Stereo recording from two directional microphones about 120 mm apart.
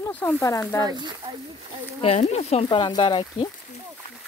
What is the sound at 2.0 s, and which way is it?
Speech, 55° left (ahead or behind).